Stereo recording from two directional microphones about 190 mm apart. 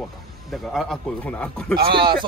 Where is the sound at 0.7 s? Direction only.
Centre (ahead or behind).